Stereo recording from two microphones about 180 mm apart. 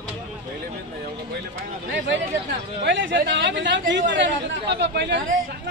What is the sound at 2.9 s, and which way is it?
A woman's voice, 90° right.